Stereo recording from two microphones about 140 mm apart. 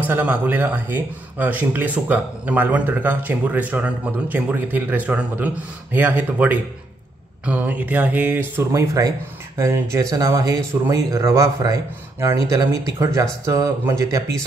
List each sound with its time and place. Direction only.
0.0 s speech: 15° right (ahead or behind)